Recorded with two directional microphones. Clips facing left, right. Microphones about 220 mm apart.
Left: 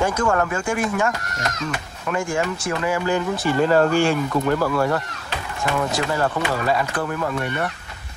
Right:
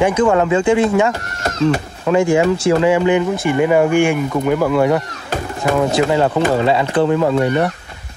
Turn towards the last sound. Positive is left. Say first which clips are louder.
# right 9 dB
turn(degrees=-40)  # may be behind; listen again after turning